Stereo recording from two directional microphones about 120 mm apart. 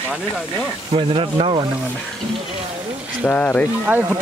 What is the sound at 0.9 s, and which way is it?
Speech, 50° right (ahead or behind).